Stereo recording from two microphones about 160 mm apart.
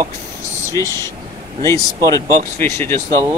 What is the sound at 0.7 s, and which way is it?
Speech, 20° left (ahead or behind).